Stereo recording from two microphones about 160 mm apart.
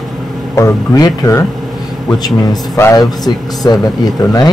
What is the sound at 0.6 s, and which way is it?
Speech, 20° left (ahead or behind).